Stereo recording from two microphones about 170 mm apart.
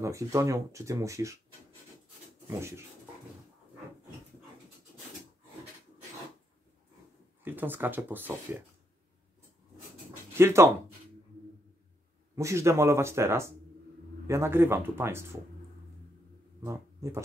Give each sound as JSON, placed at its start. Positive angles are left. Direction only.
{"t": 0.0, "sound": "speech", "side_deg": -15}
{"t": 7.4, "sound": "speech", "side_deg": -10}
{"t": 10.3, "sound": "speech", "side_deg": -15}
{"t": 12.4, "sound": "speech", "side_deg": -15}
{"t": 16.6, "sound": "speech", "side_deg": -15}